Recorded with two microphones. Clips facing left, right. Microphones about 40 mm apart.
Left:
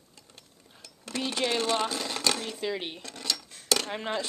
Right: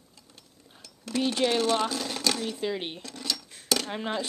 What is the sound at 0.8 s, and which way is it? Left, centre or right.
Speech, centre.